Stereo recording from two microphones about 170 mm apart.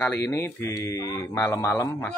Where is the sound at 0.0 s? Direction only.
10° left (ahead or behind).